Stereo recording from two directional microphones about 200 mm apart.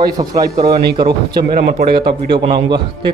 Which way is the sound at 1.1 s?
55° right (ahead or behind).